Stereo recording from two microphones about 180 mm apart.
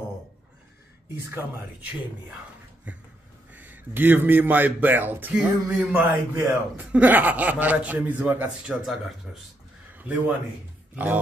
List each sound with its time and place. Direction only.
3.5 s a man's voice: 10° right (ahead or behind)